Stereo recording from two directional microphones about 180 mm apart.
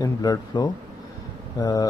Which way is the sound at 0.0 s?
20° left (ahead or behind).